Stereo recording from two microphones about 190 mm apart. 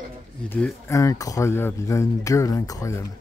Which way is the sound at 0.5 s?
10° left (ahead or behind).